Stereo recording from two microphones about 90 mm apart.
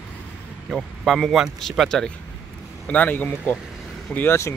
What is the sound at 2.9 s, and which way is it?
Speech, 20° left (ahead or behind).